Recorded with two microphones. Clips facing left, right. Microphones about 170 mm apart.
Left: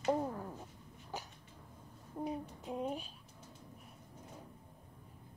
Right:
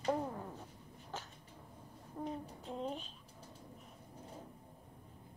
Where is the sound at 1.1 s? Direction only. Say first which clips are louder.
Left 2 dB; 15° left (ahead or behind).